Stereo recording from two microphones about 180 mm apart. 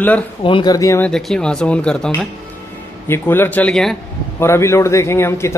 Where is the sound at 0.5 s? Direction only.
25° left (ahead or behind).